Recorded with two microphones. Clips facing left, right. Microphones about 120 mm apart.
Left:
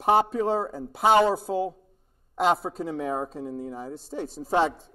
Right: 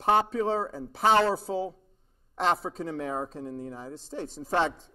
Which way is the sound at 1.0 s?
10° left (ahead or behind).